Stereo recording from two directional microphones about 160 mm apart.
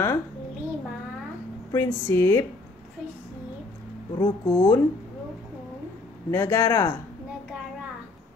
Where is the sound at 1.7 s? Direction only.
15° left (ahead or behind).